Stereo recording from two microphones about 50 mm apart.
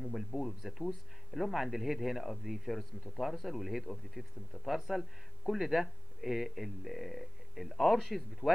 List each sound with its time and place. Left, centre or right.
0.0 s speech: centre
0.6 s speech: centre